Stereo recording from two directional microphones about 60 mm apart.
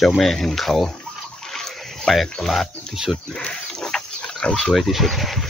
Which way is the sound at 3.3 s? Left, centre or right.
Centre.